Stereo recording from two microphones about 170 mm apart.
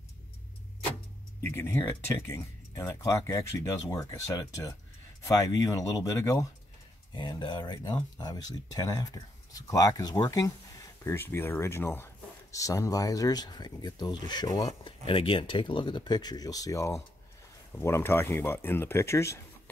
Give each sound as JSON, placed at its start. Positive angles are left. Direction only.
{"t": 1.5, "sound": "speech", "side_deg": 15}